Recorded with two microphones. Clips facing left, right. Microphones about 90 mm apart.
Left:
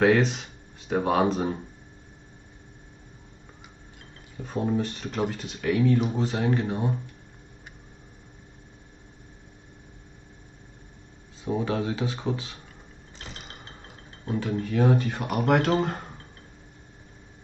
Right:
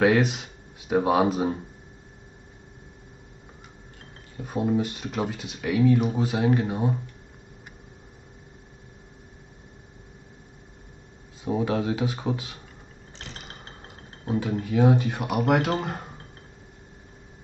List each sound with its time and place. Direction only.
0.0 s speech: 10° right (ahead or behind)
4.4 s speech: 5° right (ahead or behind)
11.4 s speech: 10° right (ahead or behind)
14.2 s speech: 15° right (ahead or behind)